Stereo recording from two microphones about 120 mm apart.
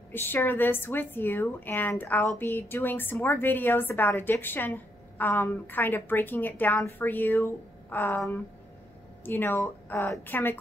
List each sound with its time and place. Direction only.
0.1 s a woman's voice: 15° left (ahead or behind)
9.2 s a woman's voice: 15° left (ahead or behind)